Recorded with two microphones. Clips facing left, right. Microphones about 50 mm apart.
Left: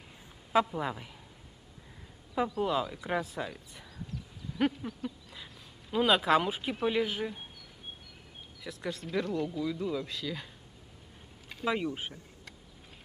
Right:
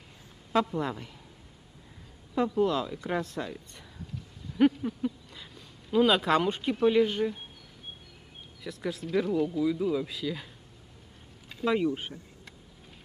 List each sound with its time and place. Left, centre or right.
0.5 s speech: centre
2.6 s speech: centre
8.6 s speech: centre
11.6 s speech: centre